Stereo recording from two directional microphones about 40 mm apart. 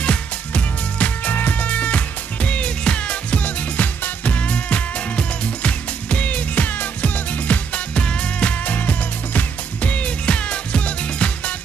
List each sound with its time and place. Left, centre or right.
0.0 s music: left
7.9 s music: left